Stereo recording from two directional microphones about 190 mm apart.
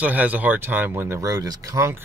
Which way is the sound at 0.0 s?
10° right (ahead or behind).